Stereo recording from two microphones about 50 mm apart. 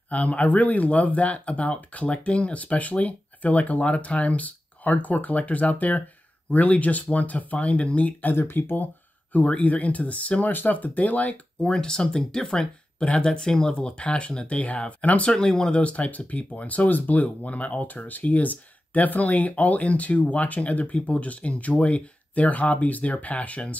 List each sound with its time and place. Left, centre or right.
0.1 s speech: left
8.4 s speech: left
9.3 s speech: left
11.6 s speech: centre
15.3 s speech: centre